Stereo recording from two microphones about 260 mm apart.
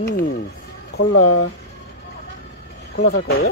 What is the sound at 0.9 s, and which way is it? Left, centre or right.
Speech, left.